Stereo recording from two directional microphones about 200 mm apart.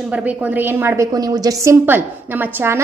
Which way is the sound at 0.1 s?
5° right (ahead or behind).